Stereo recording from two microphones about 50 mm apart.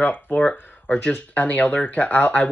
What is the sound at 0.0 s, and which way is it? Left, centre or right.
Speech, left.